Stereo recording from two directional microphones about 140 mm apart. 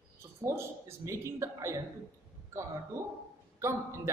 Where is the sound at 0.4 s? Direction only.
20° right (ahead or behind).